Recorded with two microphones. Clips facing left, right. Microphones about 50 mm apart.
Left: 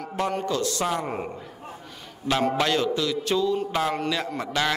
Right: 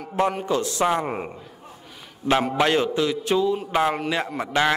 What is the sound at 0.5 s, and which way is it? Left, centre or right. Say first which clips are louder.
Speech: right 4 dB; right.